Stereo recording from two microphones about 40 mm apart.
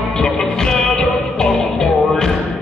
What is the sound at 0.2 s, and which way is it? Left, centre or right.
Music, centre.